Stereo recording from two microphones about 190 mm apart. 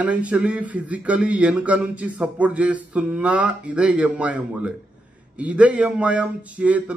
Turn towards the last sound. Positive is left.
turn(degrees=-5)  # may be behind; listen again after turning